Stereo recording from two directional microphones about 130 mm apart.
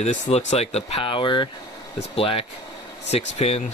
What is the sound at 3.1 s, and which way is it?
Speech, 55° left (ahead or behind).